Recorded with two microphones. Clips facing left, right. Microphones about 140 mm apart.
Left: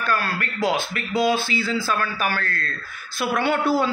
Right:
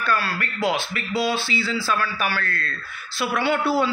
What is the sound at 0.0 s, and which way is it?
A man's voice, 45° left (ahead or behind).